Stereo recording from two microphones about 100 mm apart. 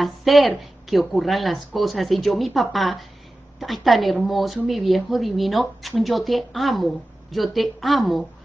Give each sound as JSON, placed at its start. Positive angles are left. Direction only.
{"t": 0.0, "sound": "speech", "side_deg": 0}